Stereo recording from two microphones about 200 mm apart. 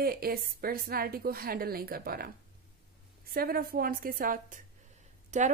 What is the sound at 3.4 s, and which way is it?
A woman's voice, 50° right (ahead or behind).